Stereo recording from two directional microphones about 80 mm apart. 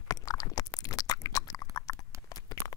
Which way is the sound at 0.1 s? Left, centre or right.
Left.